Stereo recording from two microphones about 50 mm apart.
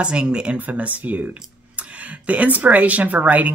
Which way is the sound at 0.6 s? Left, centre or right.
Right.